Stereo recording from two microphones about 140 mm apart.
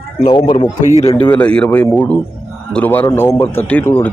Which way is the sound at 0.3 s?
40° left (ahead or behind).